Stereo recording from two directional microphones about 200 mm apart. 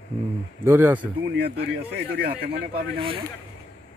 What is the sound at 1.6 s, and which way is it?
Speech, 55° right (ahead or behind).